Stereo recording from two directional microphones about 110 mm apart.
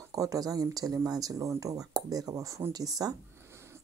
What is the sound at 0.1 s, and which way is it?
Speech, 30° right (ahead or behind).